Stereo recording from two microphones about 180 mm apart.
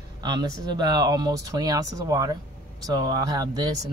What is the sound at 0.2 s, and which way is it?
Speech, 25° right (ahead or behind).